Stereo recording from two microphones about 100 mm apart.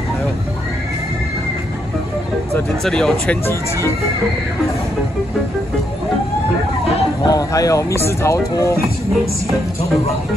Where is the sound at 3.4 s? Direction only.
25° left (ahead or behind).